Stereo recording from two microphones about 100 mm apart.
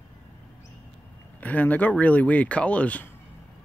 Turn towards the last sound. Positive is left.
turn(degrees=15)  # may be behind; listen again after turning